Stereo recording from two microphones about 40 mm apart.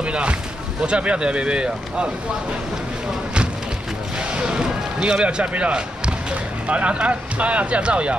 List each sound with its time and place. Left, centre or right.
0.0 s a sound: right
0.8 s speech: right
4.4 s run: right
5.2 s speech: right